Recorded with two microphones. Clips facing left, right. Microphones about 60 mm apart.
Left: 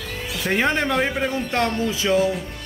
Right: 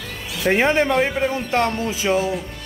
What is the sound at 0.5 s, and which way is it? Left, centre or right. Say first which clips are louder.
Speech: right 4 dB; centre.